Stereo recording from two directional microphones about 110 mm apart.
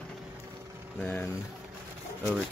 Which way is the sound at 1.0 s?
10° left (ahead or behind).